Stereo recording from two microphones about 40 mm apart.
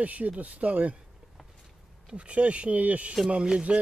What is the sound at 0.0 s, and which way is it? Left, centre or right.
Speech, right.